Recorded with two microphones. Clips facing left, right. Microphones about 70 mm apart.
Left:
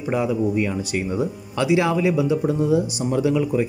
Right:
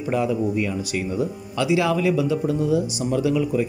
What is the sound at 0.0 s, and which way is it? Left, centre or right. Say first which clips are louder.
Speech: even; centre.